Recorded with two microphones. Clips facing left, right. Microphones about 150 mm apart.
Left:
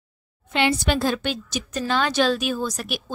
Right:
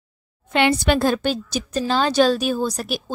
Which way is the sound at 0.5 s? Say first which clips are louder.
Right 4 dB; 65° right (ahead or behind).